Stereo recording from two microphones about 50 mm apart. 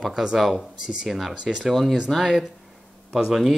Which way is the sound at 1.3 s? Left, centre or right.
Centre.